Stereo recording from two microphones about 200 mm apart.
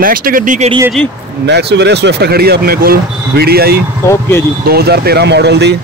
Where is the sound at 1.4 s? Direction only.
55° right (ahead or behind).